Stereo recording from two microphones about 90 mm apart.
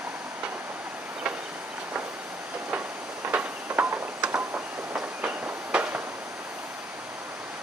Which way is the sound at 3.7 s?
15° right (ahead or behind).